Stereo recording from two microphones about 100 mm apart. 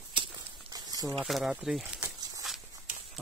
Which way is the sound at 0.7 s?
40° right (ahead or behind).